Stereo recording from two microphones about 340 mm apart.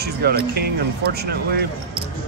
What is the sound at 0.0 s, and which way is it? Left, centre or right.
Speech, right.